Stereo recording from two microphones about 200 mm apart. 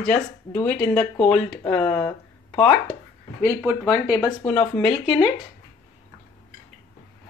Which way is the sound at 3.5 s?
15° left (ahead or behind).